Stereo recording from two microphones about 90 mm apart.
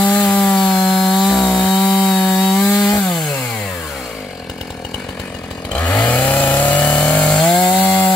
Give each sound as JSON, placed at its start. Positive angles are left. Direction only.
{"t": 0.2, "sound": "chainsaw", "side_deg": 10}
{"t": 1.4, "sound": "wood", "side_deg": 5}
{"t": 2.8, "sound": "chainsaw", "side_deg": 5}
{"t": 5.7, "sound": "chainsaw", "side_deg": 10}